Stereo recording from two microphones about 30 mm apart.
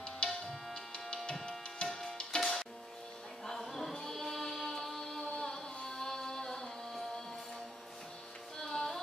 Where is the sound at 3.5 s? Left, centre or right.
Centre.